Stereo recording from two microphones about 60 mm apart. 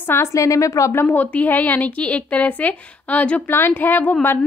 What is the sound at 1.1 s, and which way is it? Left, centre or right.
A woman's voice, left.